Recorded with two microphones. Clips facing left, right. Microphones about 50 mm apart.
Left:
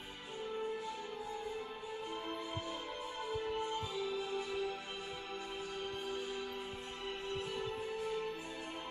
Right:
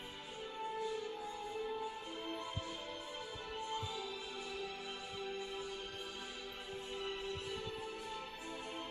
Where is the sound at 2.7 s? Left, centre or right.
Left.